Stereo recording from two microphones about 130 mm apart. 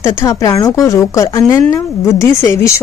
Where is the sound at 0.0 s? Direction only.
25° left (ahead or behind).